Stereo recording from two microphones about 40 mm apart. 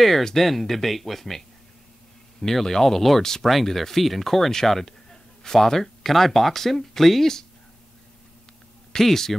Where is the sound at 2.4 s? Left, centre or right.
Centre.